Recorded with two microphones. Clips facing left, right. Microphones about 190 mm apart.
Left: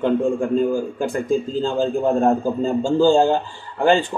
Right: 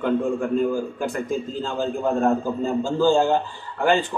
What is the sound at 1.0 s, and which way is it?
A man's voice, 30° left (ahead or behind).